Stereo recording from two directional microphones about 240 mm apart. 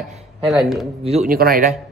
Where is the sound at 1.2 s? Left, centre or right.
Right.